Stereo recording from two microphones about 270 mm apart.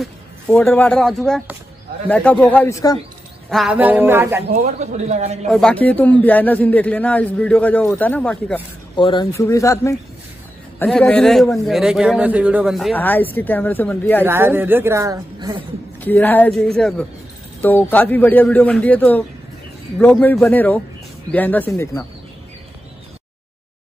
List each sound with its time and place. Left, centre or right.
0.0 s a man's voice: centre
3.4 s speech: centre
4.7 s a man's voice: right
5.5 s a man's voice: centre
8.9 s a man's voice: centre
14.2 s speech: centre
16.0 s a man's voice: centre